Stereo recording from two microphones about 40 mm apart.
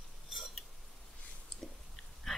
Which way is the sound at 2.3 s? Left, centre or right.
Centre.